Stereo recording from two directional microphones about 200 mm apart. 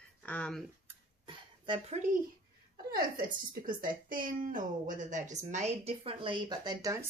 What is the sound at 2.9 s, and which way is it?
Speech, 45° right (ahead or behind).